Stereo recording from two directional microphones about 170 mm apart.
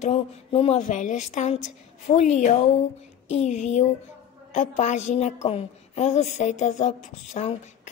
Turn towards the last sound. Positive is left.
turn(degrees=40)  # may be behind; listen again after turning